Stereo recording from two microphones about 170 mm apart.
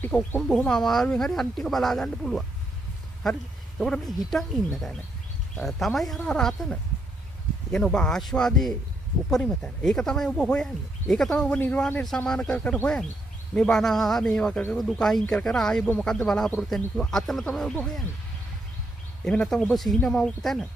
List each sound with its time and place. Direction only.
0.0 s speech: 10° left (ahead or behind)
3.8 s speech: centre (ahead or behind)
5.6 s speech: centre (ahead or behind)
19.2 s speech: 5° left (ahead or behind)